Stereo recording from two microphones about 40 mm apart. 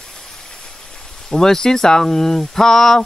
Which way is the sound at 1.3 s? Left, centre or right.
Centre.